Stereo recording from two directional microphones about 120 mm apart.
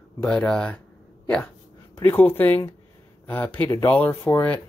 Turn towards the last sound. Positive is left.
turn(degrees=15)  # may be behind; listen again after turning